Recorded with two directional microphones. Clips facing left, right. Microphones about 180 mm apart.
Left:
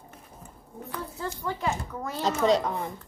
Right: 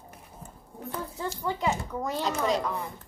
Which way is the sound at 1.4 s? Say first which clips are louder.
Right 2 dB; 15° right (ahead or behind).